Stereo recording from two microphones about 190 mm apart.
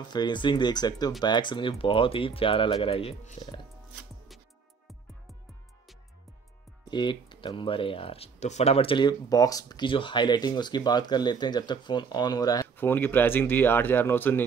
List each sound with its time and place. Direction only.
0.1 s speech: 25° left (ahead or behind)
6.8 s speech: 25° left (ahead or behind)